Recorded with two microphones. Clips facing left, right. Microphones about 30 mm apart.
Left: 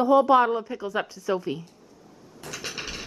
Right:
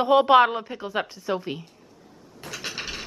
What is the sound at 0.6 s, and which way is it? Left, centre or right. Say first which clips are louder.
Speech: even; right.